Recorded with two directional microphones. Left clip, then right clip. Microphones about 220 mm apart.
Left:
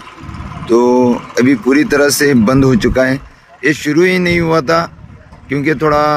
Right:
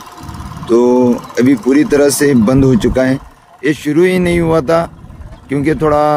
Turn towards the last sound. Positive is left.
turn(degrees=-10)  # may be behind; listen again after turning